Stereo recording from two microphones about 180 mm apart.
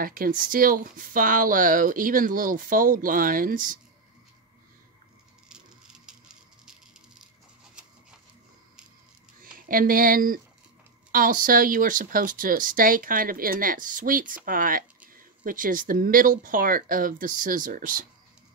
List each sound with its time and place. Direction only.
0.0 s speech: 50° right (ahead or behind)
6.0 s patter: 5° right (ahead or behind)
9.4 s speech: 50° right (ahead or behind)